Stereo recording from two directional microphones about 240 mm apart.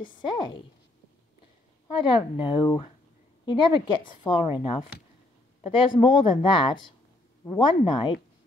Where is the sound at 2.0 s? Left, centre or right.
Left.